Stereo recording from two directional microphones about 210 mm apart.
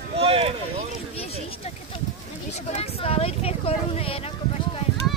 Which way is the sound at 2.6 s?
30° left (ahead or behind).